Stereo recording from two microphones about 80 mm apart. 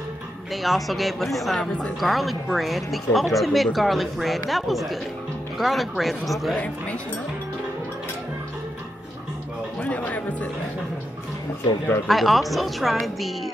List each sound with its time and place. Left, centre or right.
0.5 s speech: centre
6.5 s speech: centre
9.8 s music: centre
12.1 s speech: centre